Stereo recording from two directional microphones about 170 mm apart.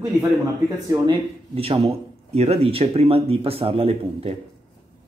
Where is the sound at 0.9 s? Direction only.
30° right (ahead or behind).